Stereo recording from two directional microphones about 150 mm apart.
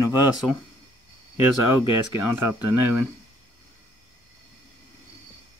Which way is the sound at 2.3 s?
15° right (ahead or behind).